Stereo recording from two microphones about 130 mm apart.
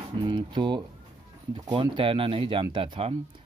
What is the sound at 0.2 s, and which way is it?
Speech, 35° right (ahead or behind).